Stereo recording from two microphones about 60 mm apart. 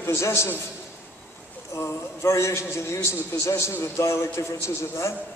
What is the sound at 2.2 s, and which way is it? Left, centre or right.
A man's voice, left.